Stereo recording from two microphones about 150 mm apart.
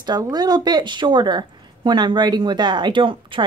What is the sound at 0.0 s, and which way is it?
A woman's voice, 25° right (ahead or behind).